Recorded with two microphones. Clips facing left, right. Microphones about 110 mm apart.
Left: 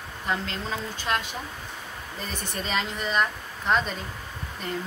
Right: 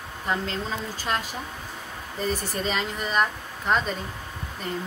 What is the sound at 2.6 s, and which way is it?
A woman's voice, centre (ahead or behind).